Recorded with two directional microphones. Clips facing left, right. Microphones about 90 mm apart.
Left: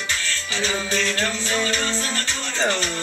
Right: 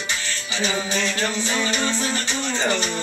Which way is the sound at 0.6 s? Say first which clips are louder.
Right 1 dB; 20° right (ahead or behind).